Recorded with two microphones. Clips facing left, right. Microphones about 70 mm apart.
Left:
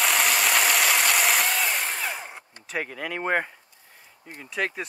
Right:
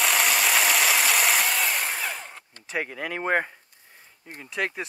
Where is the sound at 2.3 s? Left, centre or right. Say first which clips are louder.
Left 2 dB; centre.